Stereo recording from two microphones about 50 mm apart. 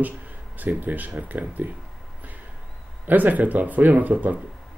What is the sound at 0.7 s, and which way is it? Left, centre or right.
Speech, right.